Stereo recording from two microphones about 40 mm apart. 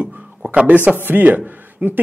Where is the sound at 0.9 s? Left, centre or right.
Right.